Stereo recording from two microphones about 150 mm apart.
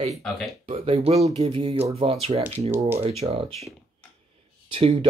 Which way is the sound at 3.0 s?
40° right (ahead or behind).